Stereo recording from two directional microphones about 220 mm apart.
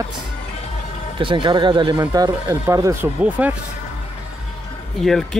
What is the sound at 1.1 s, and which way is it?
Speech, 20° right (ahead or behind).